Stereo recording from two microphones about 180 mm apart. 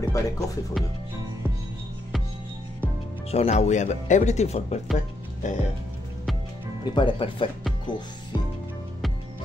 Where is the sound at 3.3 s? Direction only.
35° left (ahead or behind).